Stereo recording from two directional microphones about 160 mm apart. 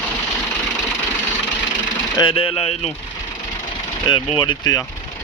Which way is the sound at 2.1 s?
35° left (ahead or behind).